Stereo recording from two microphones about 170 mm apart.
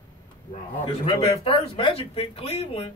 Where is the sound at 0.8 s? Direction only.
35° left (ahead or behind).